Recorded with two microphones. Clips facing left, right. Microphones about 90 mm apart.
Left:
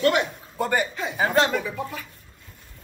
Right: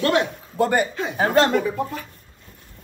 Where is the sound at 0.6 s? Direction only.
55° right (ahead or behind).